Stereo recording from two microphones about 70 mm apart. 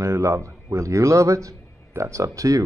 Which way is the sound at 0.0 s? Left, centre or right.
Right.